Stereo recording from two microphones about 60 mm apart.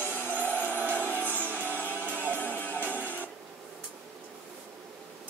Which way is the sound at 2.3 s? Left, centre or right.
Left.